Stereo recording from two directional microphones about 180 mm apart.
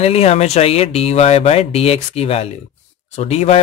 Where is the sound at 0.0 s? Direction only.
35° left (ahead or behind).